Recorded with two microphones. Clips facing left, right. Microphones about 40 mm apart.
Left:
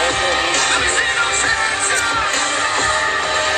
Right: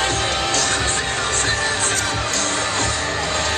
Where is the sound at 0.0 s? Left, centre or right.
Left.